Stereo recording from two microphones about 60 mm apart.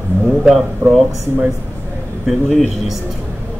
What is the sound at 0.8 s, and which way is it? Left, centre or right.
Speech, right.